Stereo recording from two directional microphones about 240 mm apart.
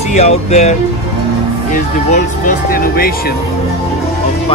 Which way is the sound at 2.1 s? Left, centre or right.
Left.